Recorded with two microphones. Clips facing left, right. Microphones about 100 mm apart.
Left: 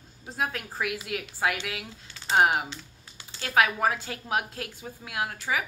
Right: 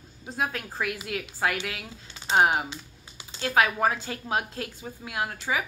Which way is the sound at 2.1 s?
20° right (ahead or behind).